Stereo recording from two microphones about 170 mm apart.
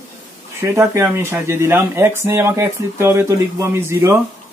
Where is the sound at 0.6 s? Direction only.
15° right (ahead or behind).